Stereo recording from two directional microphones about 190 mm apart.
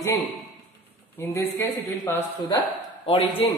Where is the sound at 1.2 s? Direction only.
15° left (ahead or behind).